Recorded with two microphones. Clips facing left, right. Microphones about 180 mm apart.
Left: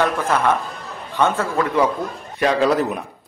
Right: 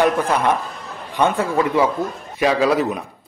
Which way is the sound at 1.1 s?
15° right (ahead or behind).